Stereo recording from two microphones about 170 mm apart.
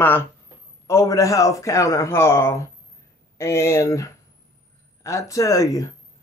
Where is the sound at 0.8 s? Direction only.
15° left (ahead or behind).